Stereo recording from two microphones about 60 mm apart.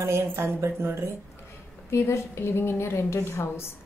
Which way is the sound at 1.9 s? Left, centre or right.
Left.